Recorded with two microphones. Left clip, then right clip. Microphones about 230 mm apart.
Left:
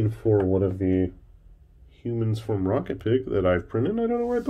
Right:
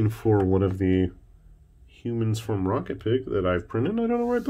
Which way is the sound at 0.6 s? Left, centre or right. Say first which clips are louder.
Even; right.